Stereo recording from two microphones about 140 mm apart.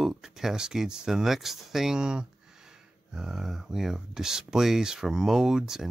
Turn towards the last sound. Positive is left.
turn(degrees=-5)  # may be behind; listen again after turning